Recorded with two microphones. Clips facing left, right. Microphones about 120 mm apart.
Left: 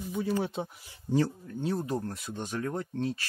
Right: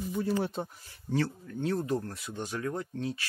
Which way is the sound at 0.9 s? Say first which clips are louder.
Left 3 dB; 20° left (ahead or behind).